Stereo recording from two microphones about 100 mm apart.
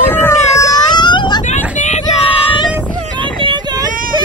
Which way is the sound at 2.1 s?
75° left (ahead or behind).